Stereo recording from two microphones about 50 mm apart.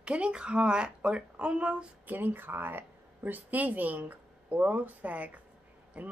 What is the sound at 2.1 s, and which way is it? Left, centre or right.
A woman's voice, right.